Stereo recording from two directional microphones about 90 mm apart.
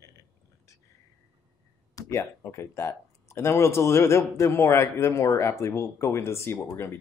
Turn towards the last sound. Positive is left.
turn(degrees=25)  # may be behind; listen again after turning